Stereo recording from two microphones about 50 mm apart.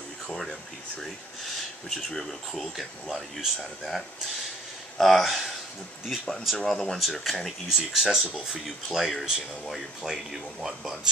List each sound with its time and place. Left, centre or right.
0.3 s speech: centre
1.9 s speech: centre